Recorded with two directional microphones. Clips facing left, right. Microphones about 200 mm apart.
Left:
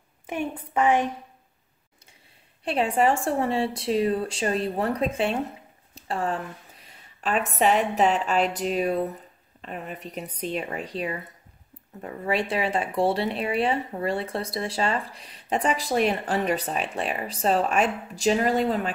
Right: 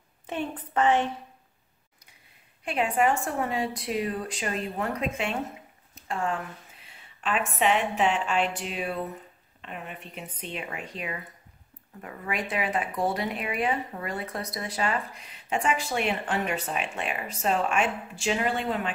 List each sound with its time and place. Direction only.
0.3 s a woman's voice: 10° left (ahead or behind)
2.6 s a woman's voice: 30° left (ahead or behind)